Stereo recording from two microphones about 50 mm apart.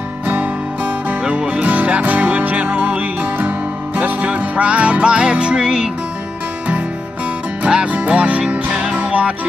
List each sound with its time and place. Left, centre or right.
1.2 s music: right
7.6 s music: right